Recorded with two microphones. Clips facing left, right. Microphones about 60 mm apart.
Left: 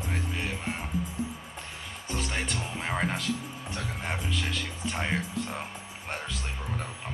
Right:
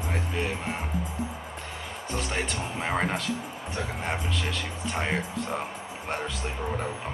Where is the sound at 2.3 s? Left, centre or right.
Centre.